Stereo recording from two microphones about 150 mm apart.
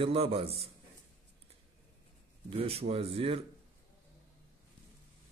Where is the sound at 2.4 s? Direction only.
40° right (ahead or behind).